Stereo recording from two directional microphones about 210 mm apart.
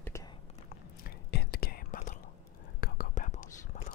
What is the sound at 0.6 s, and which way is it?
Whispering, 45° left (ahead or behind).